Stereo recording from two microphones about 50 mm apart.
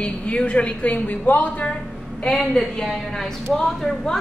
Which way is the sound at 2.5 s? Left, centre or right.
Centre.